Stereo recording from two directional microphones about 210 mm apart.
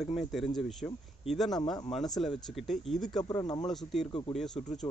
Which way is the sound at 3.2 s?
15° left (ahead or behind).